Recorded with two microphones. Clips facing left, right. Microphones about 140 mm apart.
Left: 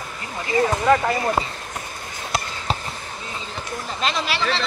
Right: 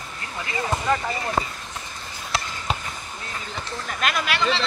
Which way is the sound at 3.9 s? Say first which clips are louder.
Left 1 dB; 25° left (ahead or behind).